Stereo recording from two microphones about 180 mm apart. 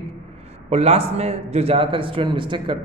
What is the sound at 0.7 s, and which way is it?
A man's voice, 35° right (ahead or behind).